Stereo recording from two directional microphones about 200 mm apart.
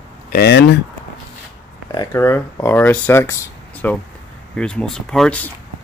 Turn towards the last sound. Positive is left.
turn(degrees=5)  # may be behind; listen again after turning